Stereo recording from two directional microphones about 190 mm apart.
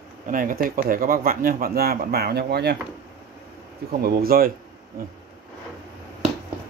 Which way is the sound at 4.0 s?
50° right (ahead or behind).